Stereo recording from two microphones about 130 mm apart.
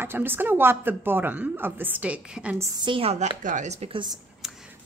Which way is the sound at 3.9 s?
35° right (ahead or behind).